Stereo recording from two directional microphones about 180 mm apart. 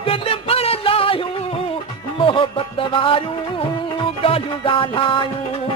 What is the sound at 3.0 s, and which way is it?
Music, 30° left (ahead or behind).